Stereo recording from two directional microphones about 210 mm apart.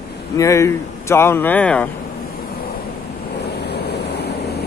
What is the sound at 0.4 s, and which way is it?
Speech, 15° left (ahead or behind).